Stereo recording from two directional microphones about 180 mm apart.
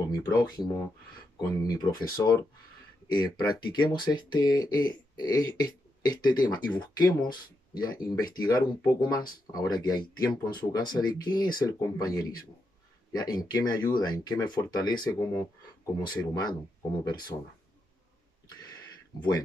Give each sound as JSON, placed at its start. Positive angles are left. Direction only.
{"t": 0.1, "sound": "speech", "side_deg": 20}
{"t": 3.1, "sound": "speech", "side_deg": 25}
{"t": 17.3, "sound": "speech", "side_deg": 35}
{"t": 19.1, "sound": "speech", "side_deg": 25}